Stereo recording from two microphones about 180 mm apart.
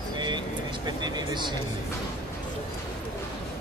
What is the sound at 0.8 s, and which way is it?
Speech, 25° right (ahead or behind).